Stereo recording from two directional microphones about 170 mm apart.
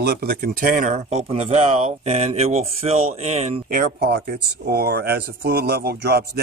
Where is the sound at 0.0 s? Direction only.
65° right (ahead or behind); by 3.6 s 40° right (ahead or behind).